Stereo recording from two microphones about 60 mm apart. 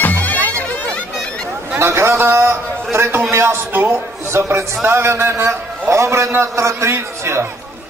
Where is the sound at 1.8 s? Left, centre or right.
Right.